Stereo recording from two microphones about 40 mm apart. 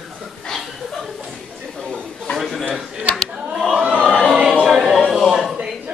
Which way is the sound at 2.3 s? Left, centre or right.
Centre.